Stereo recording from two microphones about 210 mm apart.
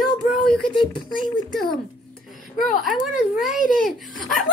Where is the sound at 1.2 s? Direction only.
Centre (ahead or behind).